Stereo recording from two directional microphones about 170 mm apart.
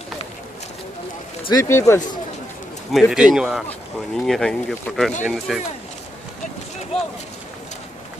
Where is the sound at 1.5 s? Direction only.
15° left (ahead or behind).